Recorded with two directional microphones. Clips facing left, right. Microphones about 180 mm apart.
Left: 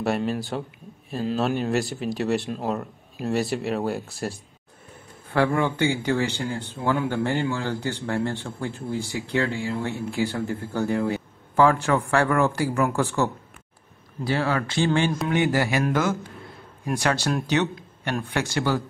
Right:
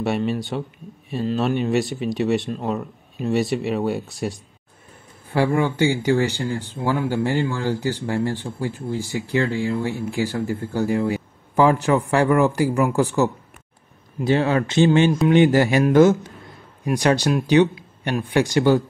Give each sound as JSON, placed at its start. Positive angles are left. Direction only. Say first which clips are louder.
{"t": 0.0, "sound": "speech", "louder": "right 2 dB", "side_deg": 0}
{"t": 5.3, "sound": "speech", "louder": "right 2 dB", "side_deg": -10}